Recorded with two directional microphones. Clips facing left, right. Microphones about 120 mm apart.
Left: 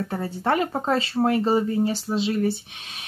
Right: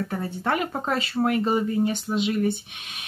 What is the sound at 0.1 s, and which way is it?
Speech, 30° left (ahead or behind).